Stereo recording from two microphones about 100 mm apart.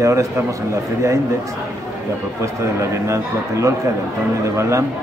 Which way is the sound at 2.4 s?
30° right (ahead or behind).